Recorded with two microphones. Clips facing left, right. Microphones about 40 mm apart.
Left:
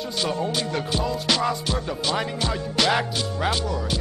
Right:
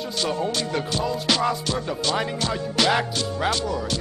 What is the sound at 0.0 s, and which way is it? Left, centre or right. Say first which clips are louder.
Music: even; centre.